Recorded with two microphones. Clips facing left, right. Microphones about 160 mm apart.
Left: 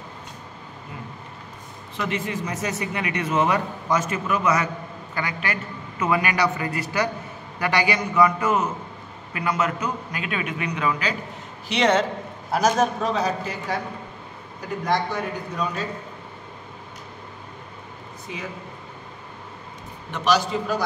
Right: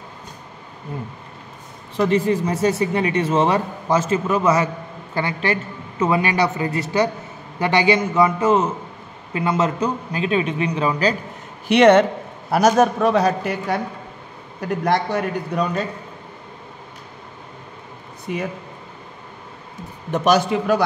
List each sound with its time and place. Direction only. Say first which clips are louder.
2.0 s a man's voice: right 10 dB; 35° right (ahead or behind)
11.6 s a man's voice: right 8 dB; 60° right (ahead or behind)
14.9 s a man's voice: right 4 dB; 65° right (ahead or behind)
20.1 s a man's voice: right 5 dB; 50° right (ahead or behind)